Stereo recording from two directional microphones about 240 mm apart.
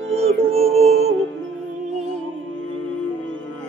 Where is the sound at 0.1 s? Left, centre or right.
Right.